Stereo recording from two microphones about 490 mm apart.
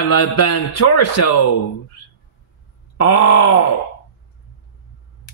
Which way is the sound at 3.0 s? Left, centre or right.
Left.